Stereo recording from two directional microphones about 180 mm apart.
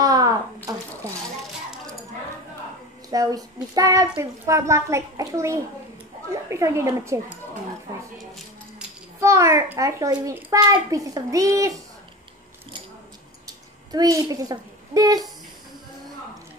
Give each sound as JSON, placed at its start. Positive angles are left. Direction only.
{"t": 0.0, "sound": "a sound", "side_deg": -20}
{"t": 3.1, "sound": "a child's voice", "side_deg": -20}
{"t": 9.2, "sound": "a child's voice", "side_deg": -15}
{"t": 13.9, "sound": "a child's voice", "side_deg": -20}